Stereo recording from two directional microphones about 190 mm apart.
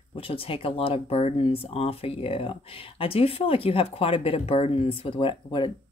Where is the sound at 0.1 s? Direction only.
30° left (ahead or behind).